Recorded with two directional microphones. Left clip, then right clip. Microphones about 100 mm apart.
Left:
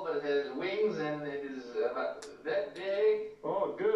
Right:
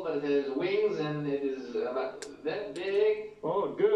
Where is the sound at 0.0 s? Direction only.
30° right (ahead or behind).